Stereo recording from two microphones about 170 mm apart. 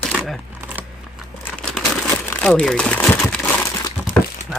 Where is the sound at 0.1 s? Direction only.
10° right (ahead or behind).